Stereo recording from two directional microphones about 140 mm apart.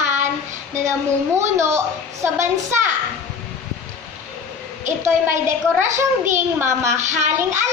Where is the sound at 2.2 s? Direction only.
20° right (ahead or behind).